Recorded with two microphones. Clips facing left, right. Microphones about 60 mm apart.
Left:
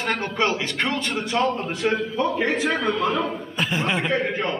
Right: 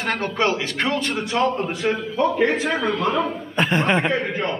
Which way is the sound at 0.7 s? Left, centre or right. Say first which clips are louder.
Right 2 dB; centre.